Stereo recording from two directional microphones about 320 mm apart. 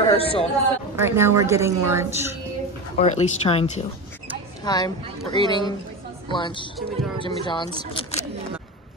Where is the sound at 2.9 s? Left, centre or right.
Left.